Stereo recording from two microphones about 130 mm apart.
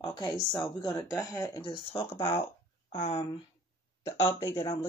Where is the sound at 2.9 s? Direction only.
45° left (ahead or behind).